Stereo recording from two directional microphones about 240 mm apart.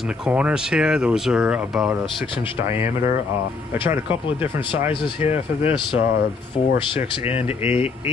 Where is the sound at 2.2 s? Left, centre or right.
Left.